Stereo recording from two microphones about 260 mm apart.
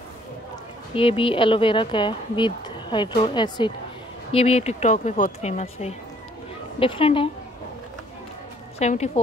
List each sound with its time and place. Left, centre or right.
0.9 s speech: left
8.7 s speech: left